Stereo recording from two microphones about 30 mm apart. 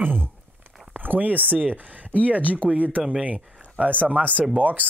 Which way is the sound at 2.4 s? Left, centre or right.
Left.